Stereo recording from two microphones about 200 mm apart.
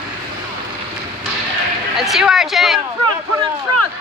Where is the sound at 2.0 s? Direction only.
Centre (ahead or behind).